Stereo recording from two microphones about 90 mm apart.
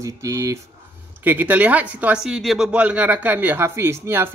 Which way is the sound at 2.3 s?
5° right (ahead or behind).